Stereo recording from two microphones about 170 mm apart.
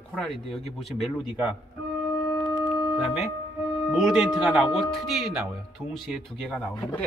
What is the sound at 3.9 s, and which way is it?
Speech, centre (ahead or behind).